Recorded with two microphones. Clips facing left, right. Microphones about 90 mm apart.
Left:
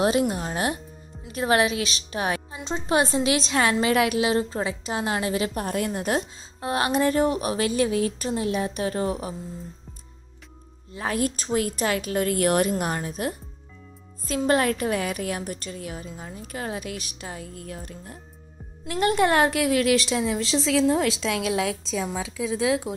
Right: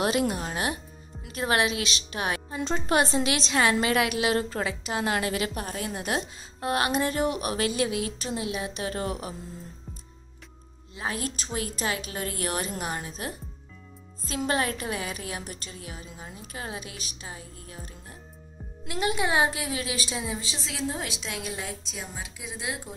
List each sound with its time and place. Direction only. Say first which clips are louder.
0.3 s a woman's voice: left 3 dB; 35° left (ahead or behind)
6.6 s a woman's voice: left 1 dB; 30° left (ahead or behind)
6.9 s a woman's voice: left 5 dB; 40° left (ahead or behind)
11.0 s a woman's voice: left 6 dB; 45° left (ahead or behind)
14.3 s a woman's voice: left 6 dB; 45° left (ahead or behind); by 21.7 s 90° left
22.9 s speech: left 9 dB; 80° left